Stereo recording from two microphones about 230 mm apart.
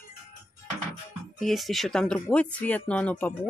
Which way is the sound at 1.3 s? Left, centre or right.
Centre.